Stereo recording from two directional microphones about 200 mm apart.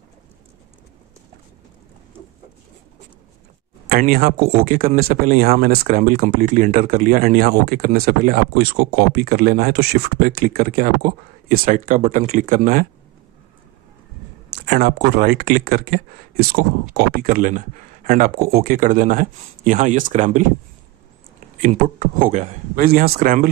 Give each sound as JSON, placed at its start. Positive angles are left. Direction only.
{"t": 3.9, "sound": "speech", "side_deg": -45}
{"t": 14.7, "sound": "speech", "side_deg": -50}
{"t": 21.5, "sound": "a man's voice", "side_deg": -40}
{"t": 22.8, "sound": "speech", "side_deg": -50}